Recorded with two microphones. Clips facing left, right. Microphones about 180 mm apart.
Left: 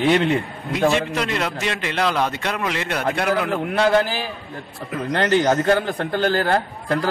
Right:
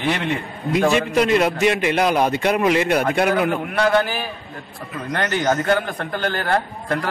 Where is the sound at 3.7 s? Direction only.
30° left (ahead or behind).